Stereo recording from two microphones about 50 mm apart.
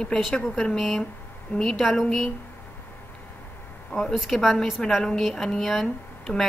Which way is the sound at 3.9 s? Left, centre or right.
Left.